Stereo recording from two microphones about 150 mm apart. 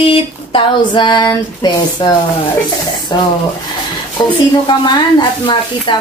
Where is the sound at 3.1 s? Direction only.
30° left (ahead or behind).